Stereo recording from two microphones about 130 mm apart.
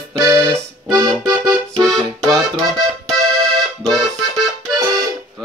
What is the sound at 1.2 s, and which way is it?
Accordion, 30° right (ahead or behind).